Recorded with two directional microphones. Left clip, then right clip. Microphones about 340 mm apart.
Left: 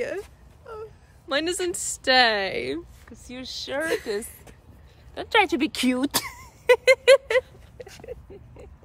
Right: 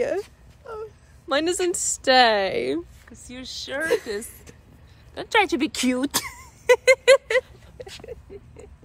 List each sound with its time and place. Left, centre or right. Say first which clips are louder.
0.7 s wail: right 3 dB; centre
1.3 s a woman's voice: right 3 dB; centre
3.1 s speech: even; centre
3.8 s a woman's voice: right 4 dB; centre
7.9 s a sound: right 1 dB; centre